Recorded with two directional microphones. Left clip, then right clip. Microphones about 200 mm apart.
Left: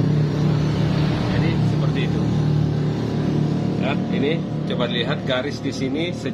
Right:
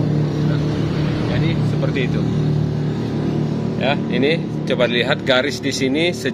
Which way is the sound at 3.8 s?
55° right (ahead or behind).